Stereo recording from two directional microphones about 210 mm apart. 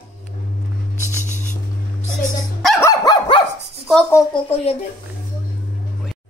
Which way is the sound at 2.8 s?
20° left (ahead or behind).